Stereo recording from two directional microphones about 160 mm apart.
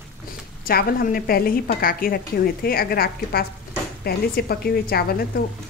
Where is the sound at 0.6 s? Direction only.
70° left (ahead or behind).